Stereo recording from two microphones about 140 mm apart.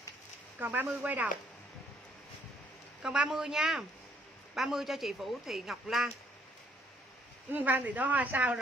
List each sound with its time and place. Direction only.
0.6 s a woman's voice: 10° right (ahead or behind)
3.0 s speech: 5° right (ahead or behind)
7.5 s a woman's voice: 10° right (ahead or behind)